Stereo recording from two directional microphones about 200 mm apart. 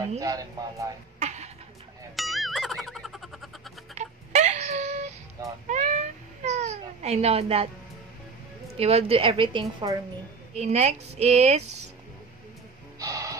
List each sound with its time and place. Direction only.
0.2 s speech: 15° right (ahead or behind)
1.2 s a sound: 35° right (ahead or behind)
2.1 s music: centre (ahead or behind)
3.9 s wail: 35° right (ahead or behind)
5.7 s babbling: 40° right (ahead or behind)
8.7 s a woman's voice: 30° right (ahead or behind)
10.5 s a woman's voice: 35° right (ahead or behind)
13.0 s music: 15° right (ahead or behind)